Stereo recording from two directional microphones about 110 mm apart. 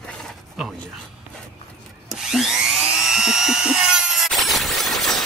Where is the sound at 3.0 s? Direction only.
5° right (ahead or behind).